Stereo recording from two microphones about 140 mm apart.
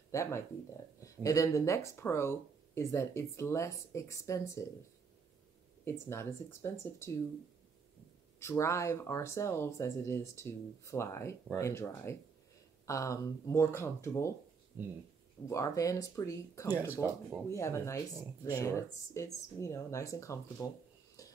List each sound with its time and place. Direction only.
0.1 s speech: 20° left (ahead or behind)
5.9 s speech: 20° left (ahead or behind)
8.4 s speech: 20° left (ahead or behind)
15.4 s speech: 25° left (ahead or behind)
21.2 s a sound: 25° left (ahead or behind)